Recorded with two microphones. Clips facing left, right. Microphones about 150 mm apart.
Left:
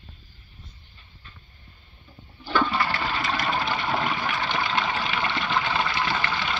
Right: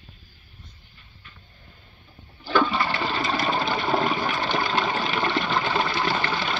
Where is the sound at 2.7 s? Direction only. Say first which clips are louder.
Right 1 dB; 25° right (ahead or behind).